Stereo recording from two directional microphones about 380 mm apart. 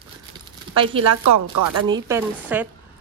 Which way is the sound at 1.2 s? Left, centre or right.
Right.